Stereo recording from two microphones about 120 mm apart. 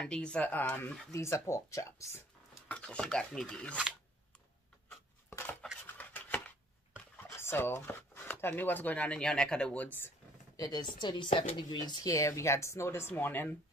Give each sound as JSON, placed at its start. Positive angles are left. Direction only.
{"t": 0.0, "sound": "speech", "side_deg": 10}
{"t": 1.1, "sound": "speech", "side_deg": 25}
{"t": 2.7, "sound": "speech", "side_deg": 10}
{"t": 5.9, "sound": "a sound", "side_deg": 15}
{"t": 7.3, "sound": "speech", "side_deg": 20}
{"t": 10.5, "sound": "a woman's voice", "side_deg": 35}